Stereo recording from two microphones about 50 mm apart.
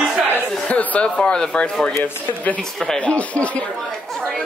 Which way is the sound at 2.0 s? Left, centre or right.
Left.